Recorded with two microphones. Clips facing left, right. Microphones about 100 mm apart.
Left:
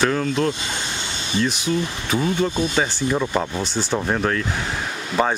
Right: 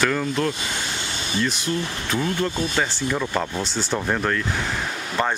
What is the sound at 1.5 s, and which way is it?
Speech, 5° left (ahead or behind).